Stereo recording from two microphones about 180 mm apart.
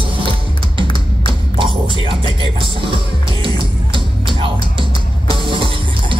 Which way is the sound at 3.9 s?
30° right (ahead or behind).